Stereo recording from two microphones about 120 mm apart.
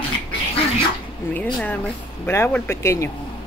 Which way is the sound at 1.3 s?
15° left (ahead or behind).